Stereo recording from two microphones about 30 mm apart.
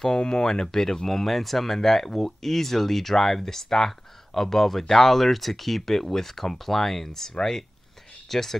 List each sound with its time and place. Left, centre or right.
0.0 s speech: left
1.0 s speech: centre